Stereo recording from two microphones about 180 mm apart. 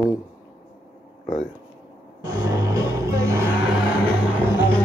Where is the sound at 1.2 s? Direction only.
45° left (ahead or behind).